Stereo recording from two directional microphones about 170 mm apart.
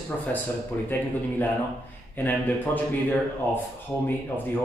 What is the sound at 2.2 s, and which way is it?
Speech, 10° left (ahead or behind).